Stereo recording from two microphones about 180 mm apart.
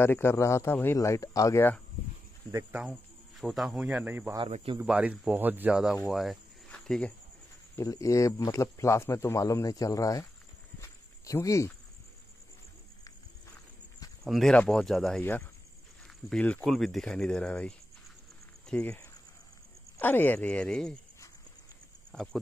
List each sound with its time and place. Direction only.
0.0 s speech: 15° left (ahead or behind)
2.5 s speech: 5° right (ahead or behind)
6.0 s cricket: centre (ahead or behind)
7.7 s speech: 15° left (ahead or behind)
10.8 s cricket: 15° left (ahead or behind)
14.2 s speech: centre (ahead or behind)
22.1 s speech: centre (ahead or behind)